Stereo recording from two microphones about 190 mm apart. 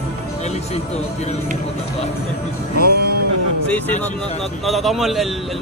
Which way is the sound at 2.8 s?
55° right (ahead or behind).